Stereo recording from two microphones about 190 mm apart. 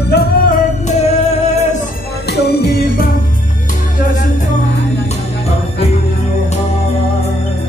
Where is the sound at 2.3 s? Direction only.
60° left (ahead or behind).